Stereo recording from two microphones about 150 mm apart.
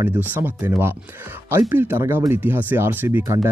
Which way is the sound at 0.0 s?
10° right (ahead or behind).